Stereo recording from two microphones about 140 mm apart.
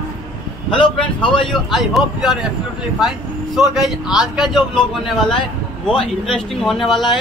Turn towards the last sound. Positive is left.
turn(degrees=0)  # may be behind; listen again after turning